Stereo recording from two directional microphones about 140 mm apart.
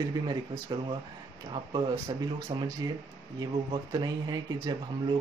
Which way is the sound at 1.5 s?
35° right (ahead or behind).